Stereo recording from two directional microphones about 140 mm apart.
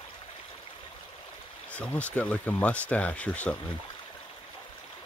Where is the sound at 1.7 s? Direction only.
10° left (ahead or behind).